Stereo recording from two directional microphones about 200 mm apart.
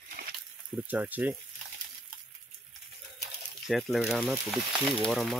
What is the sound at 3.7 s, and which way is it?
Speech, centre (ahead or behind).